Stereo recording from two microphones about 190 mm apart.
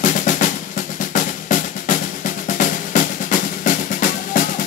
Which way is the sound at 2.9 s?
45° left (ahead or behind).